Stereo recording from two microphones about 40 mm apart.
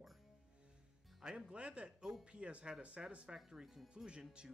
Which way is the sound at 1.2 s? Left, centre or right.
Right.